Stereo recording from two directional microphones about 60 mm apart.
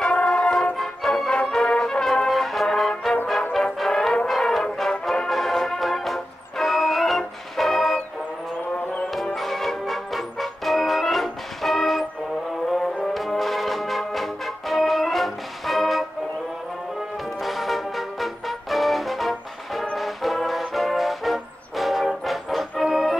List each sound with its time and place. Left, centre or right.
0.0 s music: centre
1.4 s brass instrument: centre
5.3 s music: centre
8.7 s music: left
9.1 s music: centre
13.0 s brass instrument: centre
17.4 s music: centre